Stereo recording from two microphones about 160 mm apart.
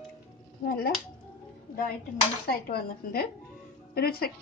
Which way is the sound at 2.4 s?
70° left (ahead or behind).